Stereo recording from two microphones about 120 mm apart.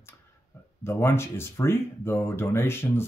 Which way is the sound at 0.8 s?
20° left (ahead or behind).